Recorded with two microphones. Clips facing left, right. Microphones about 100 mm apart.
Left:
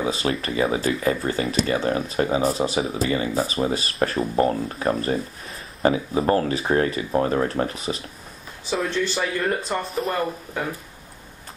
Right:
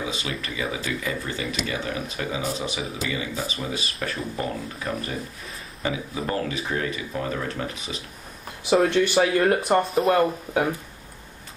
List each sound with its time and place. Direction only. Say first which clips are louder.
0.0 s speech: left 6 dB; 40° left (ahead or behind)
8.9 s speech: right 5 dB; 65° right (ahead or behind)